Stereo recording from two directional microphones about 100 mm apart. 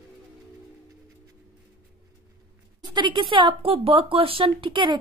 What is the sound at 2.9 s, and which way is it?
A woman's voice, 50° right (ahead or behind).